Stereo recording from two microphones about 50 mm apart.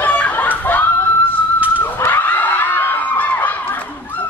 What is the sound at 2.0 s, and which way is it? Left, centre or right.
Crowd, left.